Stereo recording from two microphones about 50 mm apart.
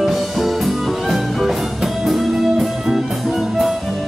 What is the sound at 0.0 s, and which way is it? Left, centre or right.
Music, centre.